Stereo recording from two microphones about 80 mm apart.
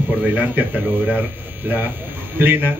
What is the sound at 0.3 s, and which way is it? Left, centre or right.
Speech, right.